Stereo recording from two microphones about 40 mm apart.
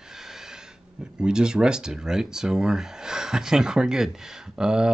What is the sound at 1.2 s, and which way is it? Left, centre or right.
Speech, centre.